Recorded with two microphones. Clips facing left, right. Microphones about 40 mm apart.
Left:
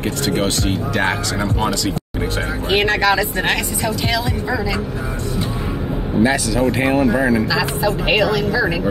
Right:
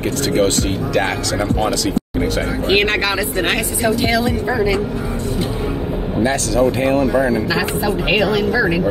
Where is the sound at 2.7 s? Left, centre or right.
Right.